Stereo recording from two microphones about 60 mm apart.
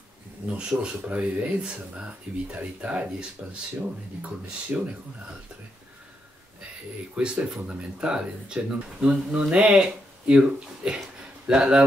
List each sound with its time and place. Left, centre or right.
0.5 s speech: centre
1.5 s speech: centre
4.7 s speech: right
7.2 s speech: centre